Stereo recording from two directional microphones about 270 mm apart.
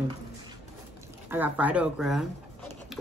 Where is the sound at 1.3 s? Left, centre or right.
Centre.